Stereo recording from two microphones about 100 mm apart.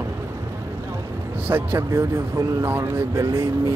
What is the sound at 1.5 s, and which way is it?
Speech, 20° right (ahead or behind).